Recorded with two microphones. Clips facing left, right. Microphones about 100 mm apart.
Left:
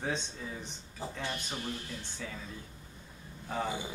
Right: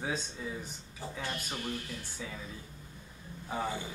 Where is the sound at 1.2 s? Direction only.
20° left (ahead or behind).